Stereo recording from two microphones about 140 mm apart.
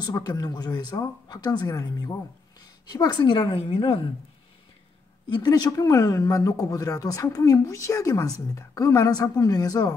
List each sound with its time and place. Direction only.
0.0 s a woman's voice: 30° left (ahead or behind)
5.3 s speech: 30° left (ahead or behind)